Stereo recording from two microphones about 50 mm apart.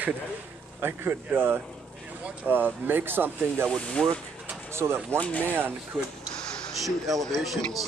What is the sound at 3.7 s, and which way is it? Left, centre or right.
Speech, centre.